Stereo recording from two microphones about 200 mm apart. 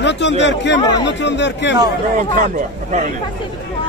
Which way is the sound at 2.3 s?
40° right (ahead or behind).